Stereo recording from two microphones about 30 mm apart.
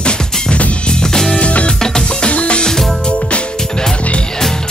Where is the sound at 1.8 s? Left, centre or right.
Left.